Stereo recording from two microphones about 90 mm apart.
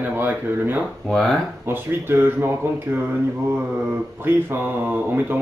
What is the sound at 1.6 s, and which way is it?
Speech, 25° right (ahead or behind).